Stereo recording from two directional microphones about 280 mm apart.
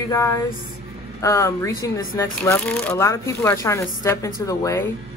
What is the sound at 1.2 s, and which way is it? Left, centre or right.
Speech, centre.